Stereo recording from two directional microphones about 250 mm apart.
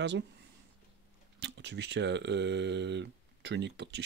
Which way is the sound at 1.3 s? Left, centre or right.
Right.